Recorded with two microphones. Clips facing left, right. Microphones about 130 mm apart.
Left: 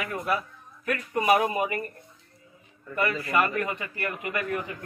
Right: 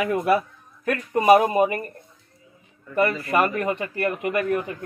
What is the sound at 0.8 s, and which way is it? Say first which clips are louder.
Speech: right 7 dB; 30° right (ahead or behind).